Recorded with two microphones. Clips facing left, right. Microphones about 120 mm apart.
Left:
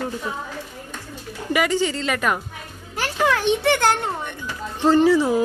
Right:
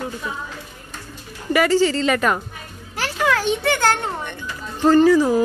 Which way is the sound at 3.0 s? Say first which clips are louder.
Even; 20° left (ahead or behind).